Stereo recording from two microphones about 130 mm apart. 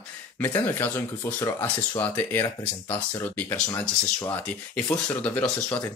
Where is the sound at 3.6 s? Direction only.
25° left (ahead or behind).